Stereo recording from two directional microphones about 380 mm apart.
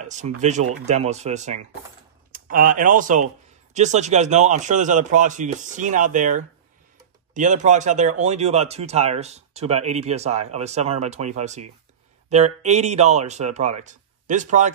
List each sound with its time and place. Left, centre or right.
0.0 s a man's voice: centre